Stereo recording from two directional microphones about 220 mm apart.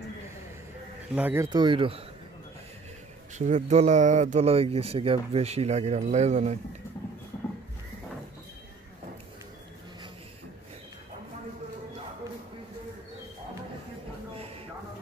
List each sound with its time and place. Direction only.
1.1 s speech: 10° right (ahead or behind)
3.3 s speech: 35° right (ahead or behind)
14.3 s a sound: 25° right (ahead or behind)